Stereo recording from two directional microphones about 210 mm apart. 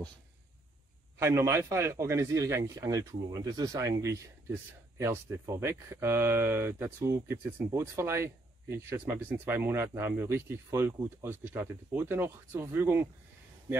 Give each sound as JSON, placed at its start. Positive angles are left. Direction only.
{"t": 1.2, "sound": "a man's voice", "side_deg": -10}